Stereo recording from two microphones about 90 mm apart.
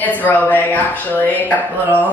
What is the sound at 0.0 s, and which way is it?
A woman's voice, 20° left (ahead or behind).